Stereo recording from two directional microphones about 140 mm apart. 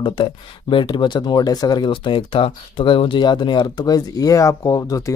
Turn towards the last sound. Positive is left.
turn(degrees=25)  # may be behind; listen again after turning